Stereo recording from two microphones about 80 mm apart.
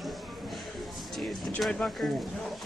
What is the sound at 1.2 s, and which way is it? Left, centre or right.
Speech, centre.